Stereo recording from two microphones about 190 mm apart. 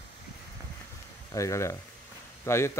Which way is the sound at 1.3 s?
15° left (ahead or behind).